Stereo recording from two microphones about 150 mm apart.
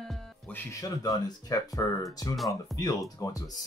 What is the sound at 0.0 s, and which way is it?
Music, 5° left (ahead or behind).